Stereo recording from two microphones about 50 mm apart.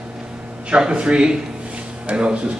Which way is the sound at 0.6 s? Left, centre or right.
Right.